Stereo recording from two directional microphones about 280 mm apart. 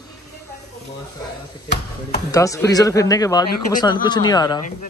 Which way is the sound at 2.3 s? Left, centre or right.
Centre.